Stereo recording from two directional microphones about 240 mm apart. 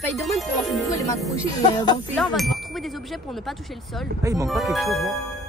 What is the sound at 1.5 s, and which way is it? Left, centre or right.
Music, centre.